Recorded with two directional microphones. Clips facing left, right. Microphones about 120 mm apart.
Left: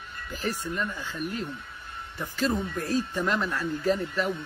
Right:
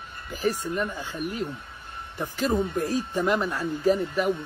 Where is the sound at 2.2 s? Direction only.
15° right (ahead or behind).